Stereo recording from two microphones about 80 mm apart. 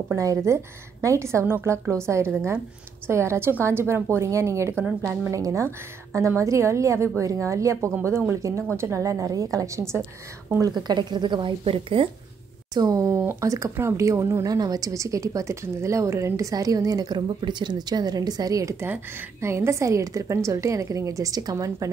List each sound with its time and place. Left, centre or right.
0.1 s a woman's voice: right
10.7 s speech: right
12.7 s a woman's voice: right
13.2 s a woman's voice: right
14.4 s a woman's voice: right
17.4 s speech: right
18.9 s a woman's voice: right